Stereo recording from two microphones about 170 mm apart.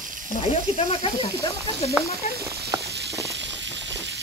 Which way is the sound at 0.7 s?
35° left (ahead or behind).